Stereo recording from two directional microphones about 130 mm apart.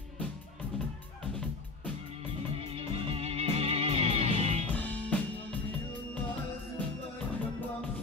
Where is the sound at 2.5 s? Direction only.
45° right (ahead or behind).